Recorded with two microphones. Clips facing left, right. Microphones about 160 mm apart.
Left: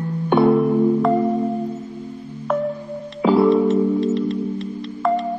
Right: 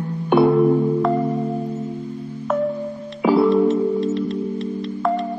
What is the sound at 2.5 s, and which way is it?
Music, centre (ahead or behind).